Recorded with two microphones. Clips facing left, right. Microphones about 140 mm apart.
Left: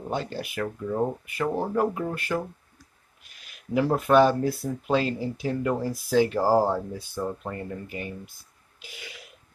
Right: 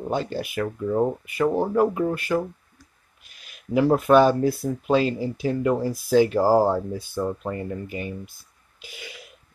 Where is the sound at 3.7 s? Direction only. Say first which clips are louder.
Right 3 dB; 10° right (ahead or behind).